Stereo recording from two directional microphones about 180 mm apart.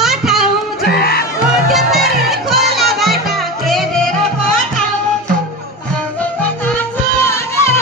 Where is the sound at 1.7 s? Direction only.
Centre (ahead or behind).